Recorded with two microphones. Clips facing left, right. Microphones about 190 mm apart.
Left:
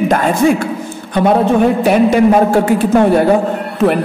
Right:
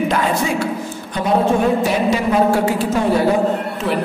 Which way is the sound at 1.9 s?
55° left (ahead or behind).